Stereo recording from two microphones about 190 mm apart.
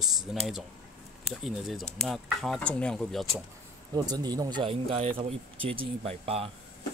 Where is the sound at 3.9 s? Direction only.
20° right (ahead or behind).